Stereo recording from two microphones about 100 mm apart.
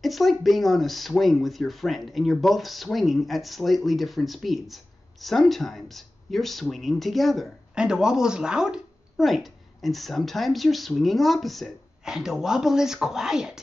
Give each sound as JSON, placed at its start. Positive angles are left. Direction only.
{"t": 0.0, "sound": "speech", "side_deg": 0}